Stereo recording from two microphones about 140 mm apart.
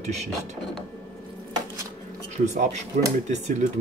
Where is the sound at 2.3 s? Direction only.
55° right (ahead or behind).